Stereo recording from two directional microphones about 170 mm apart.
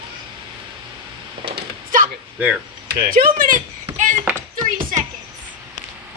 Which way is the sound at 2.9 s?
60° right (ahead or behind).